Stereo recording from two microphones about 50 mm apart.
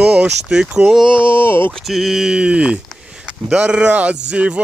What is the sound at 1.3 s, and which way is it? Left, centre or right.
Speech, left.